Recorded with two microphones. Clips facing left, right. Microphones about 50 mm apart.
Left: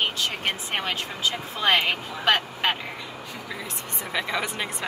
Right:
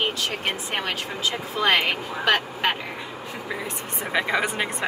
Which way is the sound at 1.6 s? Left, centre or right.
Right.